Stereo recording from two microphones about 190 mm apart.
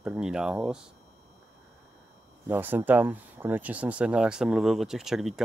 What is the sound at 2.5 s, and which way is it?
Speech, 10° right (ahead or behind).